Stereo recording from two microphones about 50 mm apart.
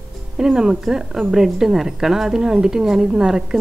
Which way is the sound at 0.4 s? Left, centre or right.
Centre.